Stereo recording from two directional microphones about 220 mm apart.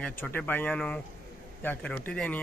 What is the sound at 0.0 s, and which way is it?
A man's voice, 5° left (ahead or behind).